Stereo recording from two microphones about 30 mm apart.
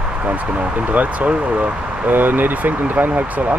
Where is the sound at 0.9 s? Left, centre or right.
Right.